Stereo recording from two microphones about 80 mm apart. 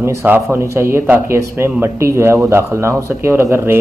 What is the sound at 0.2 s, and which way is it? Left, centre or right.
A man's voice, right.